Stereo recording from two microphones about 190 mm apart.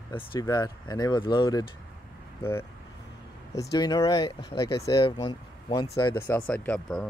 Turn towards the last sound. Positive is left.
turn(degrees=5)  # may be behind; listen again after turning